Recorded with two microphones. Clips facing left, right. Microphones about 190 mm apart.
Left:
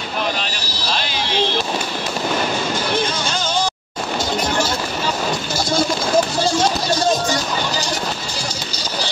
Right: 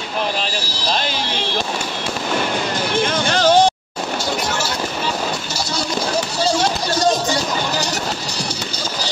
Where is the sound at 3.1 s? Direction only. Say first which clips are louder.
Right 7 dB; 60° right (ahead or behind).